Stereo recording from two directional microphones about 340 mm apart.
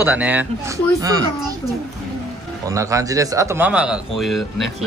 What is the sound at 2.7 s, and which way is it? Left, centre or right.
Speech, centre.